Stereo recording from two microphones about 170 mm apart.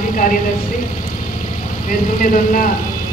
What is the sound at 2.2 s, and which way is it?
Speech, 50° left (ahead or behind).